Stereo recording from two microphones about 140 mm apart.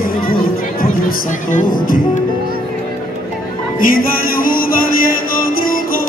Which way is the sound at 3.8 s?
90° left.